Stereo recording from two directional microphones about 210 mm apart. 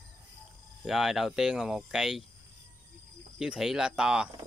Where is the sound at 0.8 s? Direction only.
Centre (ahead or behind).